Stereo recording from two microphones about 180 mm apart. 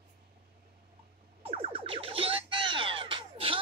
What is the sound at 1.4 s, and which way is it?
Music, 30° right (ahead or behind).